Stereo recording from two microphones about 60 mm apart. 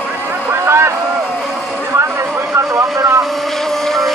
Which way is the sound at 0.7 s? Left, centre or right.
Right.